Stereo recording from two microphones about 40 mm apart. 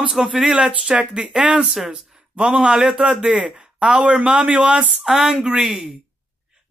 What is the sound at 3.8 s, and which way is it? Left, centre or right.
Speech, right.